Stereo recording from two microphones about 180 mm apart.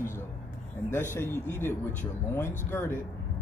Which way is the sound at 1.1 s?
10° left (ahead or behind).